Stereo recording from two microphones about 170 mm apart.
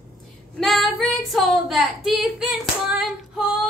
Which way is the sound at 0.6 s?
Centre (ahead or behind).